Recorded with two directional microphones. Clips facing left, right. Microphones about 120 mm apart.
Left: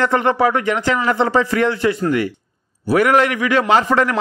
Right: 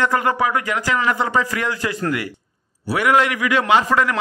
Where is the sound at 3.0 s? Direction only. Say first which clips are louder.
Left 1 dB; 35° left (ahead or behind).